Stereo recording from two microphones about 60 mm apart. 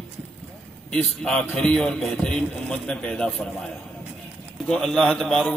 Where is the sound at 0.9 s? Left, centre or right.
Centre.